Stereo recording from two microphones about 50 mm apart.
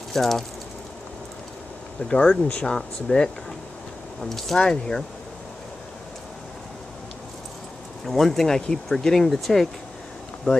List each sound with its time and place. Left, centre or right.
0.1 s speech: centre
2.0 s speech: left
8.0 s speech: centre
10.5 s speech: left